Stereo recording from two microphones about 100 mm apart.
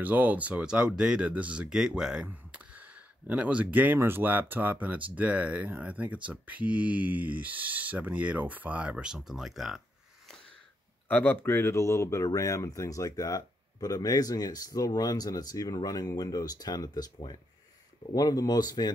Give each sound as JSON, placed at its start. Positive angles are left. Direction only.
{"t": 0.0, "sound": "speech", "side_deg": -15}
{"t": 11.1, "sound": "speech", "side_deg": 20}
{"t": 18.1, "sound": "speech", "side_deg": 40}